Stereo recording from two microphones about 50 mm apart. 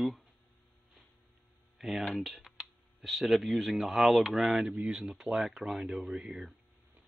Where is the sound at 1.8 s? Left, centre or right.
Centre.